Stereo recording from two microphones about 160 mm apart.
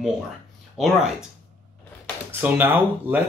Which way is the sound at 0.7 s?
5° right (ahead or behind).